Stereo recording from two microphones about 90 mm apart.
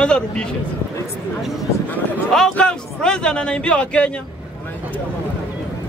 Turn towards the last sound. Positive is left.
turn(degrees=15)  # may be behind; listen again after turning